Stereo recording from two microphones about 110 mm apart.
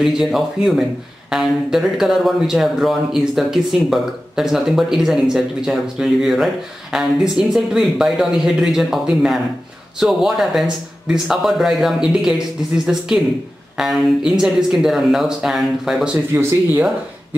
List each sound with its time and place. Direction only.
0.0 s speech: 5° right (ahead or behind)
16.3 s speech: 25° right (ahead or behind)